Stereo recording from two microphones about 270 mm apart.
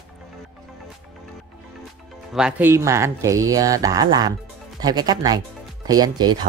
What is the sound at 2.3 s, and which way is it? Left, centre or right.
Speech, centre.